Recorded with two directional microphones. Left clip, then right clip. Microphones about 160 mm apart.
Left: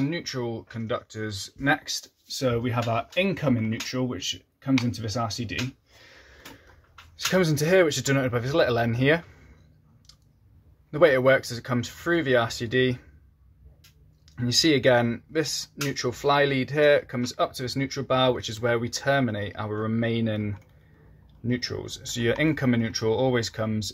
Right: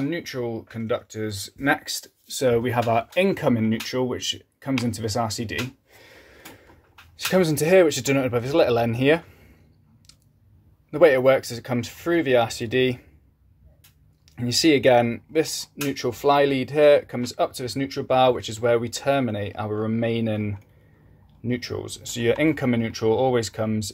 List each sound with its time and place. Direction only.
0.0 s speech: 20° right (ahead or behind)
6.0 s gasp: 30° right (ahead or behind)
7.2 s speech: 25° right (ahead or behind)
10.9 s speech: 20° right (ahead or behind)
14.3 s speech: 20° right (ahead or behind)